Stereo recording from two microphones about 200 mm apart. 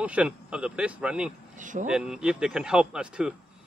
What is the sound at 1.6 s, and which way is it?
Speech, 40° right (ahead or behind).